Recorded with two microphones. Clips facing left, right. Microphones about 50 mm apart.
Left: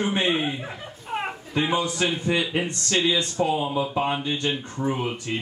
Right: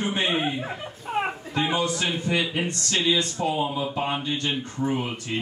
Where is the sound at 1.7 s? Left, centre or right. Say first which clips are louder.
Left 2 dB; left.